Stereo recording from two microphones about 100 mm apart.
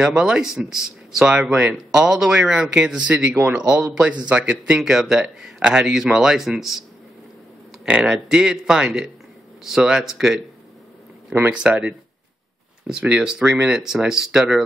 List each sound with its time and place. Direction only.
0.0 s speech: 10° right (ahead or behind)
7.8 s speech: 10° right (ahead or behind)
11.5 s speech: 10° right (ahead or behind)